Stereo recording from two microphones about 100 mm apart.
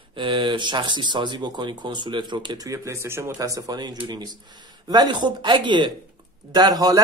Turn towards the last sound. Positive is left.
turn(degrees=-40)  # may be behind; listen again after turning